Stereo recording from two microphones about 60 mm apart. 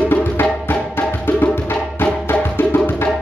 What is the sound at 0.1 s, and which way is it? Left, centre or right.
Music, left.